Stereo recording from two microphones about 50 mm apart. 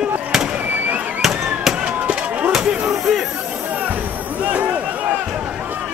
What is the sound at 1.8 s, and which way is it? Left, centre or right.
Chop, right.